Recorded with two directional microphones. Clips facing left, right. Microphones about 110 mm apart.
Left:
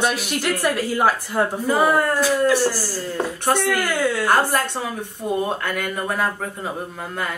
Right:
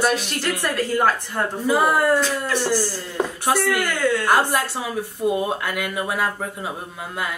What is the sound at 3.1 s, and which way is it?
Speech, 5° right (ahead or behind).